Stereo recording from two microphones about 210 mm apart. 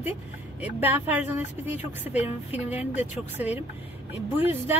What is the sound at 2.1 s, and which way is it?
Speech, 30° left (ahead or behind).